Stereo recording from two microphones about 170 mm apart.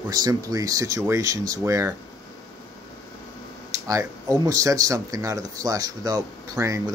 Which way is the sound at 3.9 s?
20° right (ahead or behind).